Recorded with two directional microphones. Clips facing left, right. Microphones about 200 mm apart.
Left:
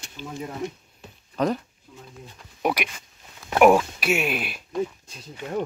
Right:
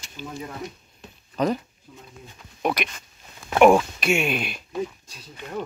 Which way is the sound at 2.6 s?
10° left (ahead or behind).